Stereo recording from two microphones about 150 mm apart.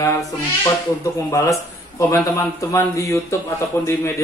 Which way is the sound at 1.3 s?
20° left (ahead or behind).